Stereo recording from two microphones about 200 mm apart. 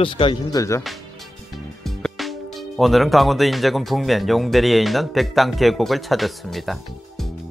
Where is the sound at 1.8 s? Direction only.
Centre (ahead or behind).